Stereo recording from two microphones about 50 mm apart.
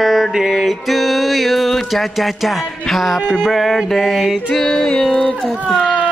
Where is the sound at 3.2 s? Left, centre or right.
Centre.